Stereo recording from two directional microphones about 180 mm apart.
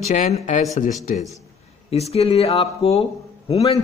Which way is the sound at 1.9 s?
35° left (ahead or behind).